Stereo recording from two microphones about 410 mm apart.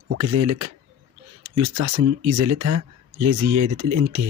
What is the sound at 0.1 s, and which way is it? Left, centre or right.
Speech, right.